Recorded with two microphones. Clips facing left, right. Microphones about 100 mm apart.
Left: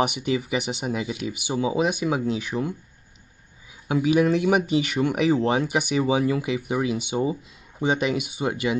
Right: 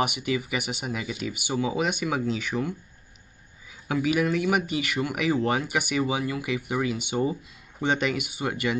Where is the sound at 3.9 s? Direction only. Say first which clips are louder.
Left 4 dB; 25° left (ahead or behind).